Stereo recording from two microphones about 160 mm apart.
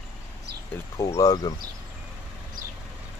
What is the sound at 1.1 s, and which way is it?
Speech, 25° left (ahead or behind).